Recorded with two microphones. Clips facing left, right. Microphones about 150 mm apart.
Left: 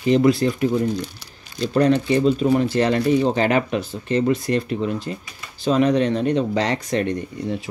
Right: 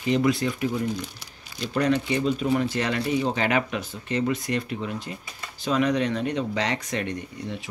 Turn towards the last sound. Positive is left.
turn(degrees=35)  # may be behind; listen again after turning